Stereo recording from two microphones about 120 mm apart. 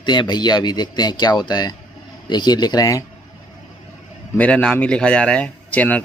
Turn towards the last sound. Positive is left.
turn(degrees=10)  # may be behind; listen again after turning